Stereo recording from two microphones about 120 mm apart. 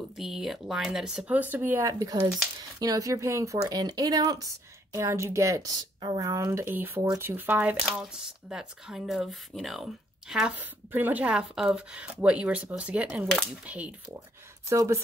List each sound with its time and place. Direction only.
0.2 s speech: 5° right (ahead or behind)
7.8 s speech: centre (ahead or behind)
14.7 s speech: 25° right (ahead or behind)